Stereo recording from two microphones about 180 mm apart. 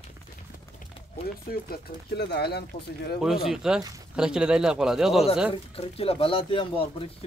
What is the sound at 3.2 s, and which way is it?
Speech, centre (ahead or behind).